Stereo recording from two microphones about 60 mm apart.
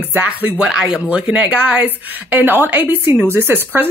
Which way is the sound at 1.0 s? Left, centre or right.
Right.